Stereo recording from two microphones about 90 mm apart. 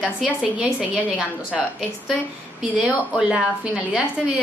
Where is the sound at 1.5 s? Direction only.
5° right (ahead or behind).